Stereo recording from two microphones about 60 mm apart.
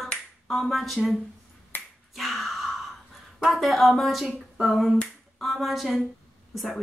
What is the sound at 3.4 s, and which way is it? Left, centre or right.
Speech, centre.